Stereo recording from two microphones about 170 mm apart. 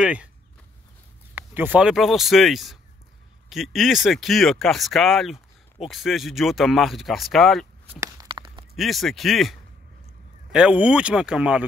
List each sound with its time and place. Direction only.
0.0 s speech: 5° right (ahead or behind)
1.3 s speech: 10° right (ahead or behind)
8.0 s a sound: 25° right (ahead or behind)
8.7 s speech: centre (ahead or behind)